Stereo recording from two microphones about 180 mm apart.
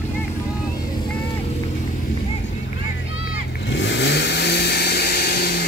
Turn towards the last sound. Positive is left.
turn(degrees=60)  # may be behind; listen again after turning